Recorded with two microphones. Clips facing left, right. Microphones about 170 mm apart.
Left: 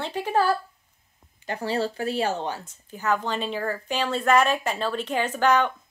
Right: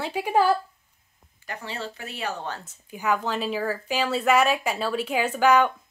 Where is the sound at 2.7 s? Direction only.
10° right (ahead or behind).